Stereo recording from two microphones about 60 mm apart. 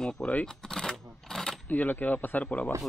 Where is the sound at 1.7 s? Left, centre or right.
Left.